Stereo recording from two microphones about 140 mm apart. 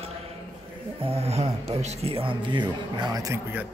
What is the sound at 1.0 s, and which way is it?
Speech, 45° right (ahead or behind).